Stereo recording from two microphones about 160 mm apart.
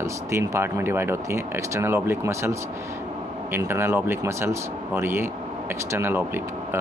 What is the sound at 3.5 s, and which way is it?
Speech, 15° right (ahead or behind).